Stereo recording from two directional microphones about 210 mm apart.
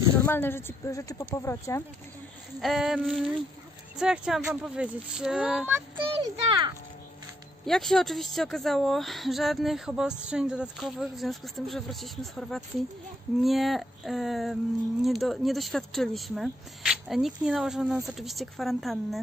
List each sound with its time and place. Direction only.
0.3 s a woman's voice: 10° left (ahead or behind)
2.6 s speech: centre (ahead or behind)
5.9 s a child's voice: 20° right (ahead or behind)
7.6 s speech: centre (ahead or behind)